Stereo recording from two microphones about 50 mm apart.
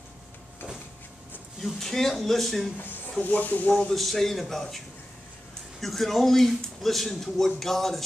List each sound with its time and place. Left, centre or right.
1.6 s speech: centre
3.2 s speech: left
3.9 s speech: centre